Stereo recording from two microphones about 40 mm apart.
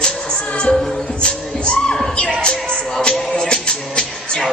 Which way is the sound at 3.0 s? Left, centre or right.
Left.